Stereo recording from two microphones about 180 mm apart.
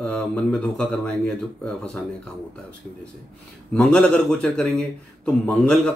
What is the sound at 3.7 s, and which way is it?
Speech, 5° left (ahead or behind).